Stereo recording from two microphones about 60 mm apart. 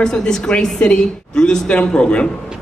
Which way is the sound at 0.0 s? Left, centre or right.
Centre.